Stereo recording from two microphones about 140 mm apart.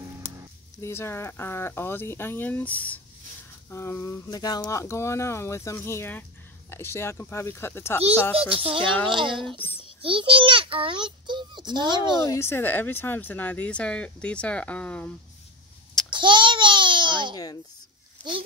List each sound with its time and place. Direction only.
0.7 s speech: 20° left (ahead or behind)
8.4 s a child's voice: 40° right (ahead or behind)
12.3 s speech: 20° left (ahead or behind)
16.1 s babbling: 35° right (ahead or behind)